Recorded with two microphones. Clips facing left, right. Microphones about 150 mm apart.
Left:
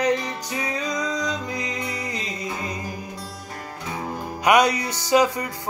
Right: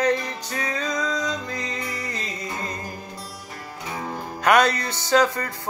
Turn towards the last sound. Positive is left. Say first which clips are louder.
# left 1 dB
turn(degrees=15)  # may be behind; listen again after turning